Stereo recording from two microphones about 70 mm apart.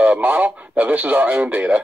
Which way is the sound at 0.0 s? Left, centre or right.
Centre.